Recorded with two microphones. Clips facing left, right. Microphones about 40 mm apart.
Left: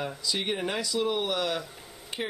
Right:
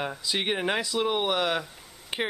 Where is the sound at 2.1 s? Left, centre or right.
Right.